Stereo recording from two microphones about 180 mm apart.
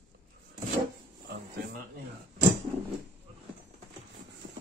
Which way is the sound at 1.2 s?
60° right (ahead or behind).